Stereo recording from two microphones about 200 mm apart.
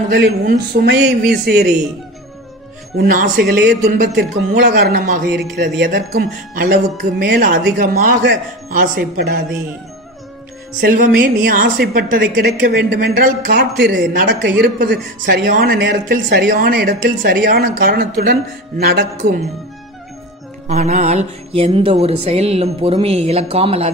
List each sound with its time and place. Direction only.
0.1 s speech: 55° right (ahead or behind)
3.0 s speech: 45° right (ahead or behind)
4.5 s music: 45° right (ahead or behind)
5.6 s speech: 50° right (ahead or behind)
10.8 s speech: 45° right (ahead or behind)
20.6 s music: 35° right (ahead or behind)